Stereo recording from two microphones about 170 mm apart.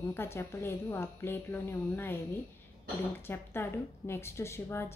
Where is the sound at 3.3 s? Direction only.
15° left (ahead or behind).